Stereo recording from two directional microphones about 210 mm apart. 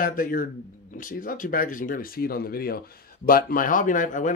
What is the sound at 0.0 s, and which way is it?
Speech, 40° left (ahead or behind).